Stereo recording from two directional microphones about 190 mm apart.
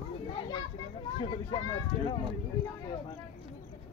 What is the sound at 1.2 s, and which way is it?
Speech, 25° left (ahead or behind).